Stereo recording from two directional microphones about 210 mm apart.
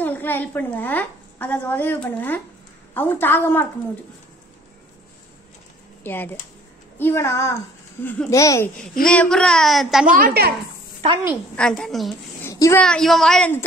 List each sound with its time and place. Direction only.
0.0 s a woman's voice: 10° left (ahead or behind)
6.0 s a woman's voice: 10° left (ahead or behind)
10.1 s a woman's voice: 45° right (ahead or behind)
11.5 s speech: 5° left (ahead or behind)
12.4 s a sound: 15° left (ahead or behind)
12.8 s speech: centre (ahead or behind)